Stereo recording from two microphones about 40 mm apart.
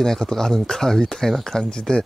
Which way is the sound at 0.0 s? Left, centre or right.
Centre.